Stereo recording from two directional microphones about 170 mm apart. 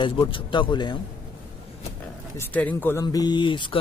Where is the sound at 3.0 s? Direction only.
25° left (ahead or behind).